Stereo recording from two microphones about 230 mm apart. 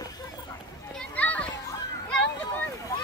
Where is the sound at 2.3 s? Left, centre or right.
Centre.